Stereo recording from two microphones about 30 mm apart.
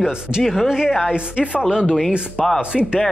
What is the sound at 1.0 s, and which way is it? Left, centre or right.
Speech, right.